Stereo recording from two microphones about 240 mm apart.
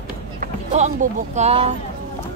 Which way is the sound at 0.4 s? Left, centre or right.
Right.